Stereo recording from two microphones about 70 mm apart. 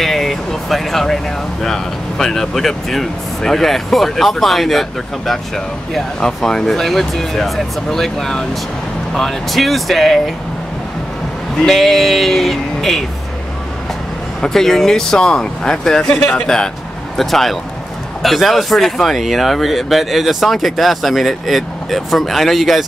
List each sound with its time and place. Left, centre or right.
0.0 s speech: centre
11.6 s speech: centre
14.4 s speech: centre